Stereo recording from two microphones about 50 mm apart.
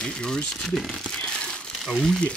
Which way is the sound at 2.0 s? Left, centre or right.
Centre.